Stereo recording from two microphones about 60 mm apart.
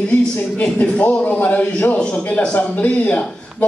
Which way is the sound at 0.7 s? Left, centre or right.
Left.